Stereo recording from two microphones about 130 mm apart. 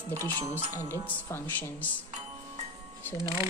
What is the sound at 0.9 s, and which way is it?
Speech, 20° left (ahead or behind).